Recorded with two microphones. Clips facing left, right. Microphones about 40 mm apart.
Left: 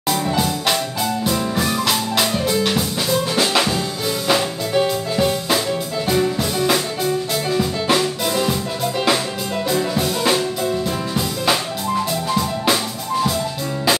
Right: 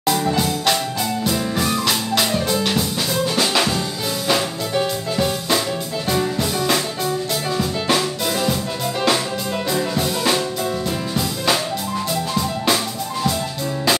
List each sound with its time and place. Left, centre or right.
0.1 s music: centre
9.7 s music: centre